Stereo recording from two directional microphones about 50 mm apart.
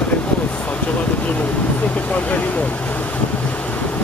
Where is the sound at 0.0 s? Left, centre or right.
Left.